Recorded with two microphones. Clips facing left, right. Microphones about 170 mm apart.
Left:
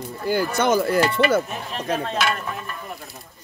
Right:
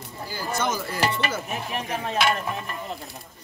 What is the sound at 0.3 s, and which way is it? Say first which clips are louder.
Speech: left 8 dB; 65° left (ahead or behind).